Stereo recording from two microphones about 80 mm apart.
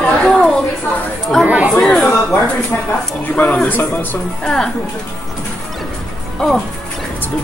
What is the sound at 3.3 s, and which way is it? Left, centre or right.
Speech, centre.